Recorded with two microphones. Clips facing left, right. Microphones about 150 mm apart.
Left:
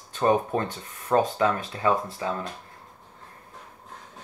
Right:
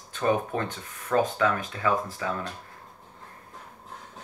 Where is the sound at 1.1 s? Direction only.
30° left (ahead or behind).